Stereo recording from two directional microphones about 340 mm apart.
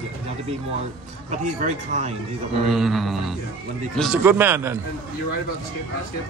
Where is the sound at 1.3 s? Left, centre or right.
Right.